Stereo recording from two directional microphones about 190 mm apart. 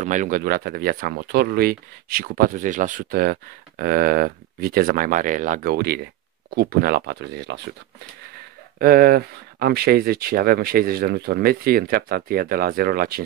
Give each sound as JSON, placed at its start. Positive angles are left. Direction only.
{"t": 0.0, "sound": "speech", "side_deg": -40}
{"t": 8.7, "sound": "speech", "side_deg": -50}